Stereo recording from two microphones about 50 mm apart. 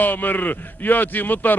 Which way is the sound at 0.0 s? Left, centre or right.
Left.